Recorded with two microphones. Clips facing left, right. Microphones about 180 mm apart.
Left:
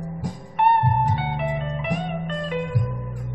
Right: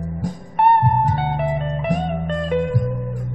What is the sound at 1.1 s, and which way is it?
Music, 40° right (ahead or behind).